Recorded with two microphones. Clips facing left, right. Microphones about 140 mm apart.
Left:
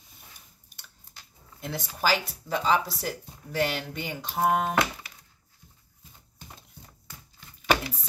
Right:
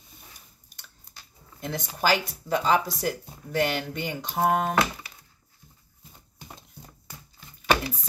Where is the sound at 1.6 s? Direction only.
5° left (ahead or behind).